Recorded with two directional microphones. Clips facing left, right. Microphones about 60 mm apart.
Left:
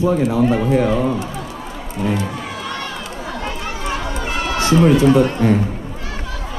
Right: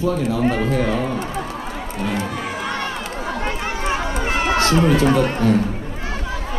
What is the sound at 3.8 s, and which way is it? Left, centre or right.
Run, right.